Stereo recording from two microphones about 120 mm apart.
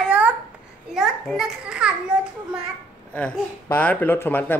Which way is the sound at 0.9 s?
5° right (ahead or behind).